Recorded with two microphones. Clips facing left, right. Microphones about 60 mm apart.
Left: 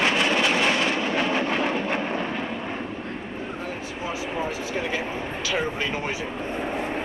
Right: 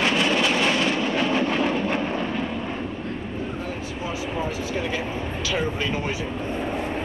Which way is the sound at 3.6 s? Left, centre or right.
Left.